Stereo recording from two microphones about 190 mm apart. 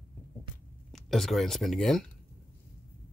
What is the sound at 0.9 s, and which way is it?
Speech, centre (ahead or behind).